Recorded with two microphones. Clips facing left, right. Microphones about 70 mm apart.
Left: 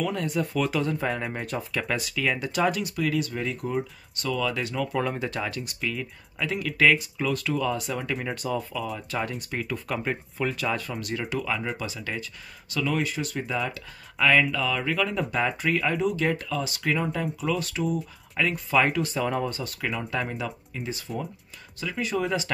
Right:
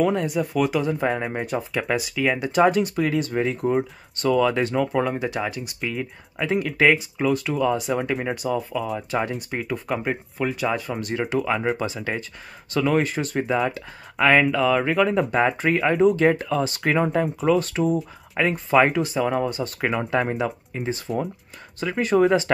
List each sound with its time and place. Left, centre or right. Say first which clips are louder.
0.2 s speech: right 4 dB; centre; by 4.8 s right
4.9 s speech: right 4 dB; centre
5.8 s speech: right 3 dB; right
19.1 s speech: right 4 dB; centre
20.0 s speech: right 8 dB; right